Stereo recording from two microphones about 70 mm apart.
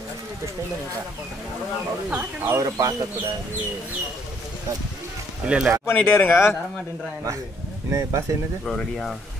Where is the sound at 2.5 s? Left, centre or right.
Right.